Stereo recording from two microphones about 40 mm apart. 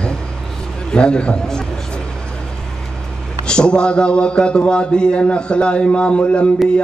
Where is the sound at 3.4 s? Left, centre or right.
Left.